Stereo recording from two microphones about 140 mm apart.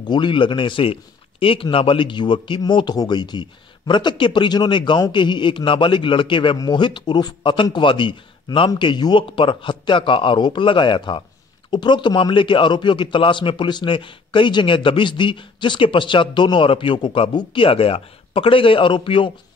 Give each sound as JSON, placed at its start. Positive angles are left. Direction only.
{"t": 0.0, "sound": "speech", "side_deg": 35}